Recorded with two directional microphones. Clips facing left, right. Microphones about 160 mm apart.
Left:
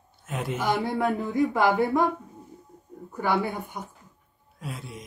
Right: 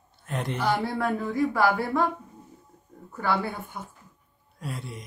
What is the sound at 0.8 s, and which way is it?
Speech, 20° left (ahead or behind).